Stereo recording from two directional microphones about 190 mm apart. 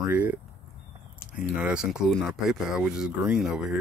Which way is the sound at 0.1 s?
10° right (ahead or behind).